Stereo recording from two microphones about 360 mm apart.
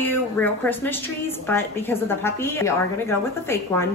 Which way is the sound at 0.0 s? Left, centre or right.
Centre.